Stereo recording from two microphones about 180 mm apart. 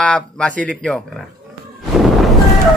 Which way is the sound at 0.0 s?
5° left (ahead or behind).